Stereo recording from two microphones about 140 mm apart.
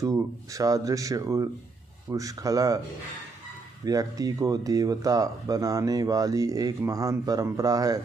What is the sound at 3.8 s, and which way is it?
Speech, 25° right (ahead or behind).